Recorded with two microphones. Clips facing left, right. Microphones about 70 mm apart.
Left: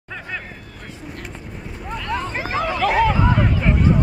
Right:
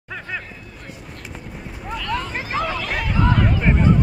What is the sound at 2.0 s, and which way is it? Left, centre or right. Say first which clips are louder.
Vehicle: left 2 dB; centre.